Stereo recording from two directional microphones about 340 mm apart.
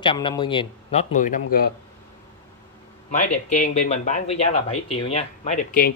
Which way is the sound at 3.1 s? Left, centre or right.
Left.